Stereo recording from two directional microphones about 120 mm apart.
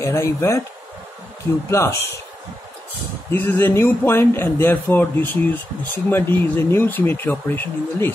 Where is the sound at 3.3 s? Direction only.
20° left (ahead or behind).